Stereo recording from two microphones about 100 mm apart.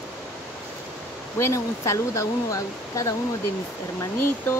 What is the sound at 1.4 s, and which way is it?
Speech, 30° left (ahead or behind).